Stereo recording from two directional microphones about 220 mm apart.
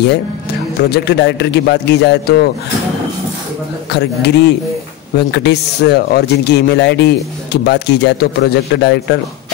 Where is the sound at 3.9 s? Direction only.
50° left (ahead or behind).